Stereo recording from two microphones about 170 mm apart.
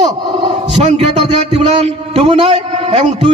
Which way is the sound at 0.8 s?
40° right (ahead or behind).